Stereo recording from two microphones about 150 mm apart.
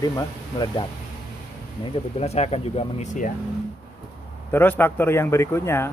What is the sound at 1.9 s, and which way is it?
Speech, 45° left (ahead or behind).